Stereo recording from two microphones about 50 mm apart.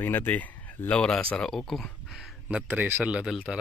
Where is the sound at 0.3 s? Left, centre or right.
Left.